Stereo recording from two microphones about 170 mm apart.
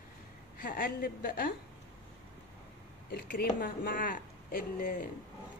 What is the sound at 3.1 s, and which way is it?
A woman's voice, 60° left (ahead or behind).